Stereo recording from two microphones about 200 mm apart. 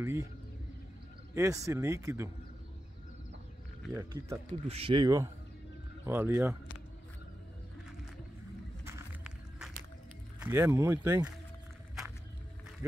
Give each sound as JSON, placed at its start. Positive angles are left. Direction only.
{"t": 0.0, "sound": "speech", "side_deg": -10}
{"t": 1.3, "sound": "speech", "side_deg": -15}
{"t": 3.9, "sound": "speech", "side_deg": -15}
{"t": 4.6, "sound": "speech", "side_deg": -30}
{"t": 8.8, "sound": "a sound", "side_deg": -10}
{"t": 10.4, "sound": "speech", "side_deg": -15}